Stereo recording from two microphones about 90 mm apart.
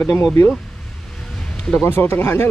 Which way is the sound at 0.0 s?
10° left (ahead or behind).